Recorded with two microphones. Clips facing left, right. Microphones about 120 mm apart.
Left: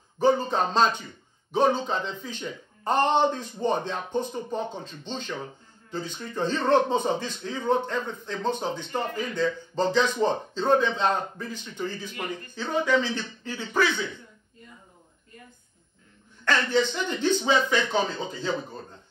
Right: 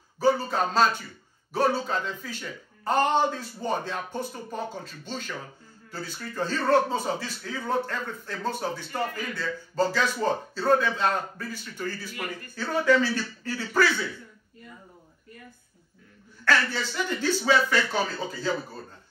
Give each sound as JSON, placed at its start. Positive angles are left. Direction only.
{"t": 0.2, "sound": "a man's voice", "side_deg": 20}
{"t": 16.4, "sound": "a man's voice", "side_deg": 20}